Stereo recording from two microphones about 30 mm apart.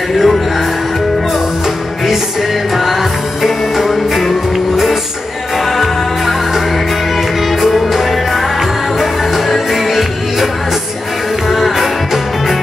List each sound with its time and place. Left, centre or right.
0.1 s music: centre
2.8 s music: centre
11.5 s music: centre